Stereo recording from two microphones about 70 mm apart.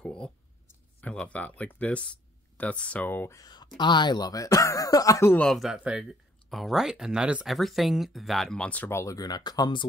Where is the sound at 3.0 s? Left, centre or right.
Left.